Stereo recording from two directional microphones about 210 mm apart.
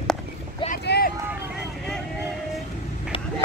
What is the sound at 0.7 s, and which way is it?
Boat, 45° left (ahead or behind).